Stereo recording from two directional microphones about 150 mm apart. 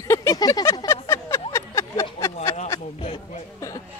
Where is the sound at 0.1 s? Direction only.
20° left (ahead or behind).